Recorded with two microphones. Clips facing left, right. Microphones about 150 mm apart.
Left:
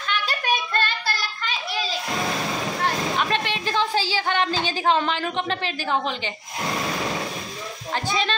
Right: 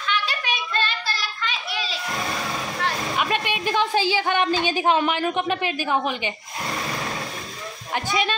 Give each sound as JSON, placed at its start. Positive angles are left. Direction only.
{"t": 0.1, "sound": "child singing", "side_deg": 50}
{"t": 3.2, "sound": "a woman's voice", "side_deg": -10}
{"t": 7.9, "sound": "a child's voice", "side_deg": -10}